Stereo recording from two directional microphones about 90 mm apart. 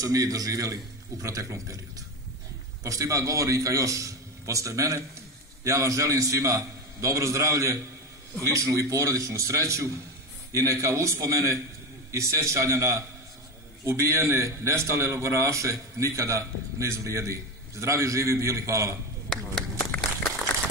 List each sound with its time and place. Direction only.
0.0 s a man's voice: 40° right (ahead or behind)
19.2 s speech: centre (ahead or behind)